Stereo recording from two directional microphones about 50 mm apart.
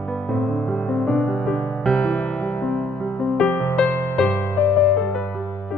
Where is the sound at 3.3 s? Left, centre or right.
Left.